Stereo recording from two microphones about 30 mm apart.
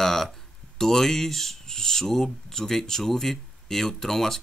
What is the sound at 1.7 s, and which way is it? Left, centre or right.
Speech, centre.